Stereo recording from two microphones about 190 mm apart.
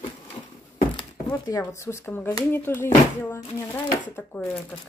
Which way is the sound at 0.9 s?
20° left (ahead or behind).